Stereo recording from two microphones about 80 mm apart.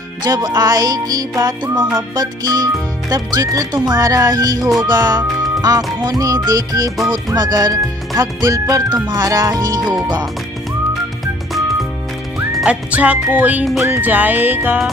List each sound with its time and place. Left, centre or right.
0.2 s a child's voice: right
12.6 s music: centre